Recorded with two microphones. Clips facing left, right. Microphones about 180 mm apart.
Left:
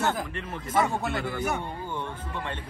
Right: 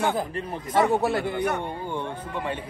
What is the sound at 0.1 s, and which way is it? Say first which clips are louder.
Speech: right 4 dB; 35° right (ahead or behind).